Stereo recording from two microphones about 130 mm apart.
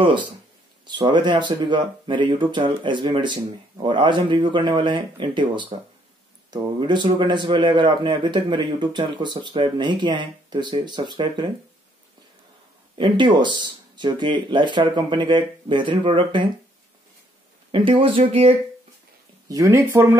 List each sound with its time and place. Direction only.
0.0 s speech: 35° right (ahead or behind)
12.9 s speech: 35° right (ahead or behind)
17.6 s speech: 40° right (ahead or behind)
19.5 s speech: 25° right (ahead or behind)